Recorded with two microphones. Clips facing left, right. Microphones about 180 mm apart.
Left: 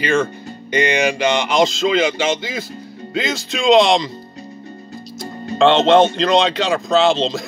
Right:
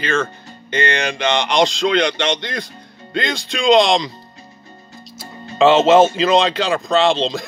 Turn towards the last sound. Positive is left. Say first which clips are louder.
# left 1 dB
turn(degrees=0)  # may be behind; listen again after turning